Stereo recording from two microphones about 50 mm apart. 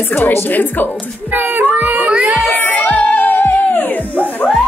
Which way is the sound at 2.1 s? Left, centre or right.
Right.